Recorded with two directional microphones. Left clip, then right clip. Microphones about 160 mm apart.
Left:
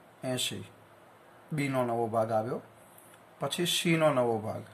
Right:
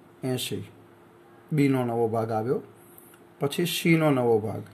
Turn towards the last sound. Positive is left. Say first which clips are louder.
# right 5 dB
turn(degrees=-25)  # may be behind; listen again after turning